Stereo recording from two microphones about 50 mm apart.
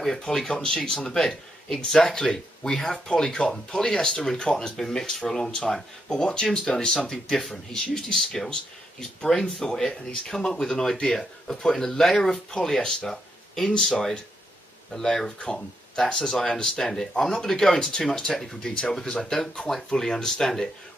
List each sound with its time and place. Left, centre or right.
0.0 s speech: centre